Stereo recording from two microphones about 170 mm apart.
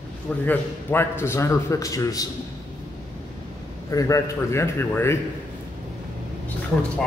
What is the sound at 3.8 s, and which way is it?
A man's voice, 20° left (ahead or behind).